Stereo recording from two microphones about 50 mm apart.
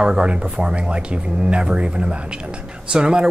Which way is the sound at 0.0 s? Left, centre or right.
Right.